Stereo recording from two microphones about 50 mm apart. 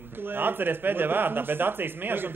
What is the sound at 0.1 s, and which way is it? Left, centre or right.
Speech, right.